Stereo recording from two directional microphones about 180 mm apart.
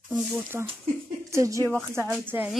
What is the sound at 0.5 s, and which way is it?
Speech, 10° right (ahead or behind).